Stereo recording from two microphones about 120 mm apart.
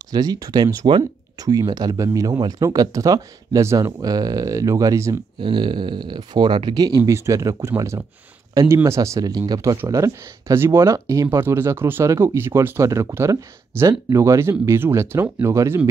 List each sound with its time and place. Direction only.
0.1 s speech: 35° right (ahead or behind)
0.8 s speech: 45° right (ahead or behind)
1.5 s speech: 30° right (ahead or behind)
5.4 s speech: 40° right (ahead or behind)
7.0 s speech: 25° right (ahead or behind)